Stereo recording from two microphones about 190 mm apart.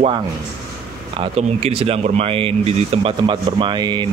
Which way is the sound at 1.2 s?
30° right (ahead or behind).